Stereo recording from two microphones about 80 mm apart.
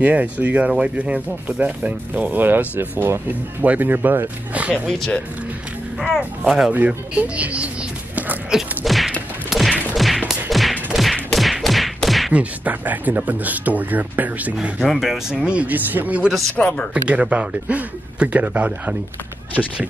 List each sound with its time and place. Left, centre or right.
0.0 s speech: centre
4.8 s speech: centre
6.7 s speech: centre
8.5 s a sound: centre
12.3 s speech: centre
16.5 s speech: centre
16.9 s speech: centre